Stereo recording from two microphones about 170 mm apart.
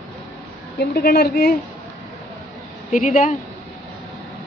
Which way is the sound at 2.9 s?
50° left (ahead or behind).